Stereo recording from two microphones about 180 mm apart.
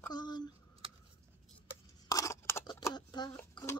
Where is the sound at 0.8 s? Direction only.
30° right (ahead or behind).